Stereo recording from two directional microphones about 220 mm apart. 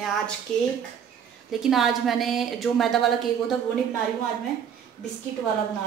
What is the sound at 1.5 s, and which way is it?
A woman's voice, centre (ahead or behind).